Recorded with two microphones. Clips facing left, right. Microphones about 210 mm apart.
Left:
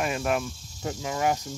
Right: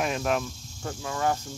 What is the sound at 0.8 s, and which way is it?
Speech, 20° left (ahead or behind).